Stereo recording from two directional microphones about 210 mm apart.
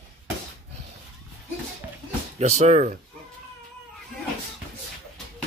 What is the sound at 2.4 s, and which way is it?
Speech, 35° right (ahead or behind).